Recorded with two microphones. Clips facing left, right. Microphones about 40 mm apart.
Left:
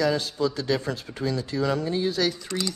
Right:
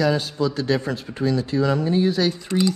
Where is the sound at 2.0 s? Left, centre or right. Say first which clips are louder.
Right 5 dB; right.